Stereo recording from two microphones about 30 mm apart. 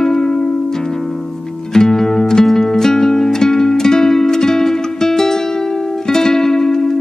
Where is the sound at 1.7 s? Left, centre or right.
Centre.